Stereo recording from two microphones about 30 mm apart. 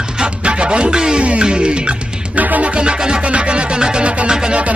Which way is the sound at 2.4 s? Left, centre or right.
Right.